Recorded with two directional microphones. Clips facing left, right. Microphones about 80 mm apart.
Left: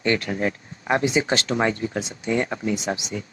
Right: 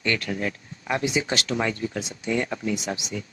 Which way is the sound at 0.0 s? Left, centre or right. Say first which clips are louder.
Left 4 dB; left.